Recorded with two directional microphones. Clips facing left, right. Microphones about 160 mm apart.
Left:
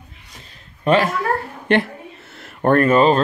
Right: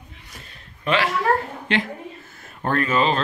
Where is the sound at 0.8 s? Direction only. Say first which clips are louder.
Left 6 dB; 45° left (ahead or behind).